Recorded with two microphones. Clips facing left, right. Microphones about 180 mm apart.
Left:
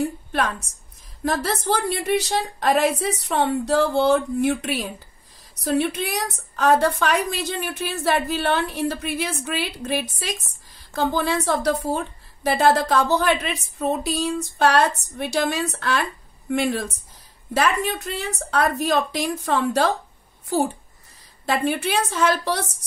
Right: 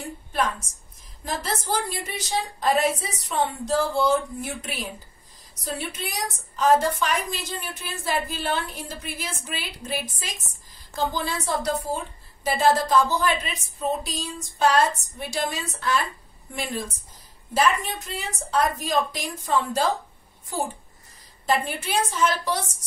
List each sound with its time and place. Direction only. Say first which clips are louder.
1.2 s a woman's voice: left 6 dB; 65° left (ahead or behind)
21.5 s a woman's voice: left 3 dB; 65° left (ahead or behind)